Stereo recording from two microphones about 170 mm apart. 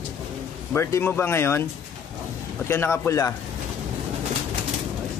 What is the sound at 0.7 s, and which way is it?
Speech, 15° left (ahead or behind).